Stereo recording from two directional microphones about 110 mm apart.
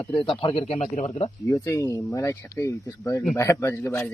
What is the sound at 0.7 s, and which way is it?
Speech, 85° left.